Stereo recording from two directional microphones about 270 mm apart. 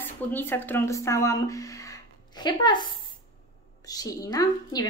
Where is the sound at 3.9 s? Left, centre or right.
Centre.